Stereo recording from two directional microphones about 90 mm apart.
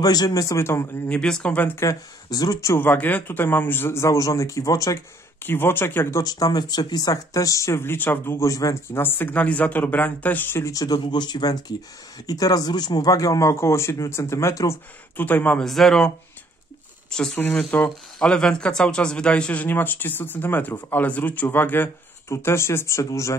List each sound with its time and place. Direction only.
0.0 s speech: 45° left (ahead or behind); by 1.0 s 30° left (ahead or behind)
1.0 s speech: 10° left (ahead or behind)
1.9 s speech: 45° left (ahead or behind)
2.7 s speech: 20° left (ahead or behind); by 4.9 s 40° left (ahead or behind)
5.4 s speech: 25° left (ahead or behind)
6.2 s speech: 45° left (ahead or behind)
8.9 s speech: 25° left (ahead or behind)
10.7 s speech: 45° left (ahead or behind)
15.1 s speech: 20° left (ahead or behind)
15.6 s speech: 5° left (ahead or behind)
17.1 s speech: 10° left (ahead or behind); by 23.3 s 35° left (ahead or behind)